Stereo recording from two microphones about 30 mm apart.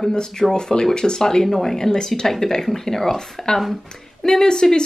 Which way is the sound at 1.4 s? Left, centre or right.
Centre.